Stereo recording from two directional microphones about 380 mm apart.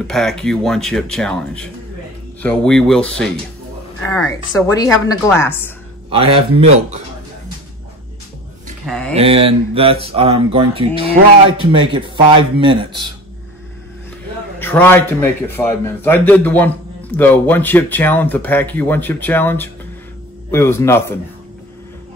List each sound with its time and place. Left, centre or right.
0.0 s speech: centre
6.0 s mantra: centre
8.8 s a sound: centre
9.1 s mantra: centre
14.6 s speech: centre